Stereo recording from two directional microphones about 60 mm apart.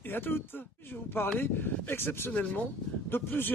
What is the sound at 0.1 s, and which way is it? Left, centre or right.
Speech, left.